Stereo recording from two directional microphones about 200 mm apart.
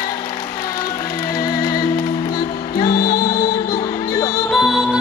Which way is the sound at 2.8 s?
50° left (ahead or behind).